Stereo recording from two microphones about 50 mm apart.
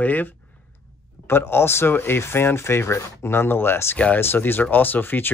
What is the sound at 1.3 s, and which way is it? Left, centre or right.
A man's voice, left.